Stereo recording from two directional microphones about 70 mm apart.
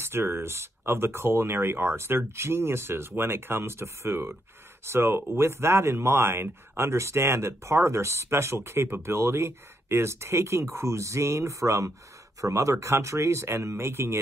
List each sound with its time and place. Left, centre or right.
0.0 s speech: right